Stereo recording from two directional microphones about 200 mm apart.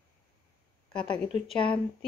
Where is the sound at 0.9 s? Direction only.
25° left (ahead or behind).